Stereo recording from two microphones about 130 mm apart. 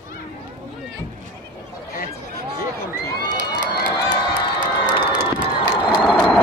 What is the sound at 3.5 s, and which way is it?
Run, 35° left (ahead or behind).